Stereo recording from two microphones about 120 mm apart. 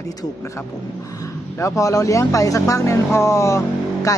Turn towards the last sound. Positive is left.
turn(degrees=25)  # may be behind; listen again after turning